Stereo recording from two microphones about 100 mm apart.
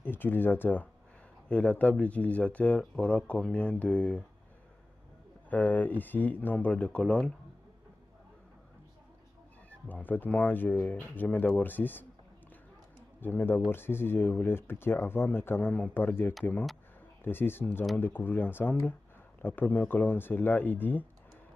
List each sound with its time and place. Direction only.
0.0 s speech: 20° left (ahead or behind)
5.5 s speech: 15° left (ahead or behind)
9.7 s speech: 15° left (ahead or behind)
13.2 s speech: 20° left (ahead or behind)